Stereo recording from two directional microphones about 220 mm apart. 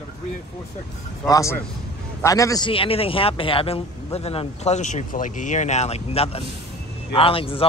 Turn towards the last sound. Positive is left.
turn(degrees=25)  # may be behind; listen again after turning